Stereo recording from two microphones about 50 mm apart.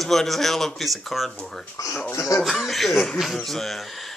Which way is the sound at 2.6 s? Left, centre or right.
Centre.